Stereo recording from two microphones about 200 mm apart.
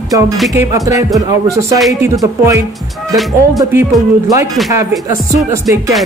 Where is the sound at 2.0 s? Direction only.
15° right (ahead or behind).